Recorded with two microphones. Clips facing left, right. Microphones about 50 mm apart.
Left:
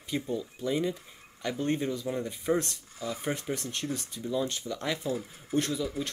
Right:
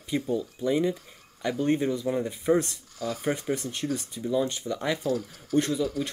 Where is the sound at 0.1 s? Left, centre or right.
Centre.